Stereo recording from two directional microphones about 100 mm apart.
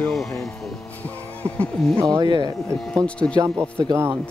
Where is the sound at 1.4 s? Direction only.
15° left (ahead or behind).